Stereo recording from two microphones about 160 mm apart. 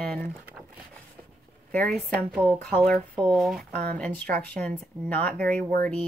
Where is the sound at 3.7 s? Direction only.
75° right (ahead or behind).